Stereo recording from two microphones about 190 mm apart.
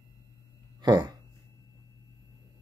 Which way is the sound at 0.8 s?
20° right (ahead or behind).